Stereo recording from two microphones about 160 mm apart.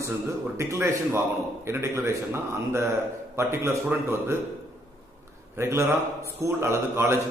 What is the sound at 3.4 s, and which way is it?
A man's voice, 15° right (ahead or behind).